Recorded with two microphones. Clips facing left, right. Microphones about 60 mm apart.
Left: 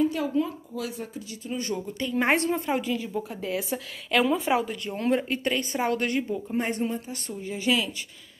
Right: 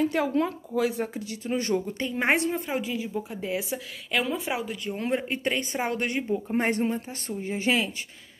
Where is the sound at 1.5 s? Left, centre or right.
Right.